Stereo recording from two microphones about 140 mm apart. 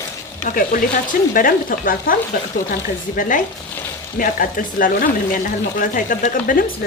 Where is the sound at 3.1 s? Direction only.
75° left (ahead or behind).